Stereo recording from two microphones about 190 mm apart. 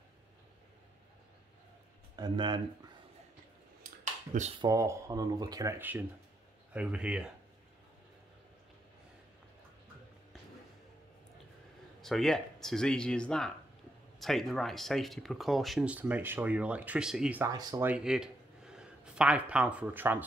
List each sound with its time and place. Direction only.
2.1 s speech: 25° right (ahead or behind)
4.0 s a sound: 40° right (ahead or behind)
4.6 s speech: 15° right (ahead or behind)
12.0 s speech: centre (ahead or behind)
17.5 s speech: 20° right (ahead or behind)
17.8 s speech: 5° right (ahead or behind)